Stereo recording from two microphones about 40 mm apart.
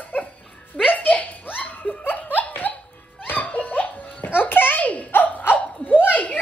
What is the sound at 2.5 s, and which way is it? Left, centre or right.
Music, left.